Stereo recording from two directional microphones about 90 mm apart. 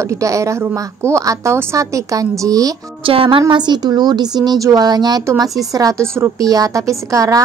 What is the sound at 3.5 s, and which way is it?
Speech, 55° right (ahead or behind).